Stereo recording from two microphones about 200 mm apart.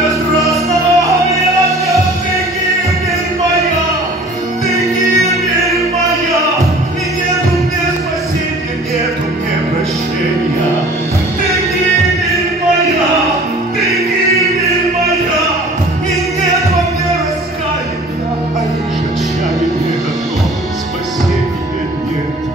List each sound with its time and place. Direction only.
0.5 s music: 15° right (ahead or behind)